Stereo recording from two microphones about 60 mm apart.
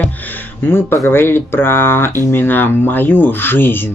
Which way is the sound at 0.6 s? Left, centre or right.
Left.